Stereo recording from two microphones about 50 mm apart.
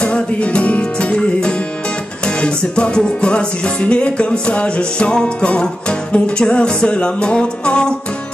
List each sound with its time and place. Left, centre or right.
0.0 s music: left